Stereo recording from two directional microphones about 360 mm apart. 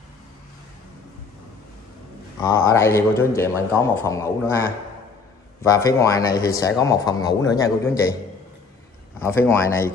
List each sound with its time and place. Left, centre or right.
2.4 s speech: centre
9.2 s speech: centre